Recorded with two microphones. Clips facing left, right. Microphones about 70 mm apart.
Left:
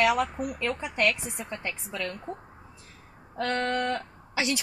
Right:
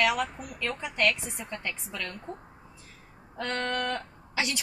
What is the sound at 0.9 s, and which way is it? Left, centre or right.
A woman's voice, left.